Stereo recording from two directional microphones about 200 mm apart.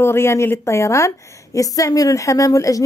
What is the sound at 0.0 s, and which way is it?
A woman's voice, 10° left (ahead or behind).